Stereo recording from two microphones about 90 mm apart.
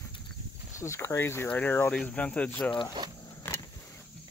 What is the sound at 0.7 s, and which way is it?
Speech, 30° left (ahead or behind).